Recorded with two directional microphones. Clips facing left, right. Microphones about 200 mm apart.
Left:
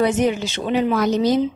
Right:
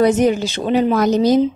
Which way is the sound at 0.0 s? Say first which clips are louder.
Right 4 dB; 40° right (ahead or behind).